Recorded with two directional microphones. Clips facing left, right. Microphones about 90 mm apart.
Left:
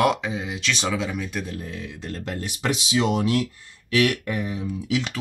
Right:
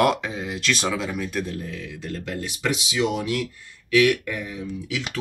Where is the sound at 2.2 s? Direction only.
35° left (ahead or behind).